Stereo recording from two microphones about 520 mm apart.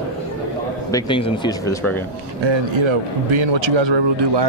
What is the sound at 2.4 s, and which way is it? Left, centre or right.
A man's voice, right.